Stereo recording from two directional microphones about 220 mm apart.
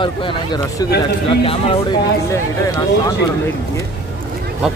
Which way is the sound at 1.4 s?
25° left (ahead or behind).